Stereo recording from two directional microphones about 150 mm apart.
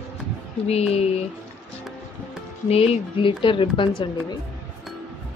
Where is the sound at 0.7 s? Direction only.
45° left (ahead or behind).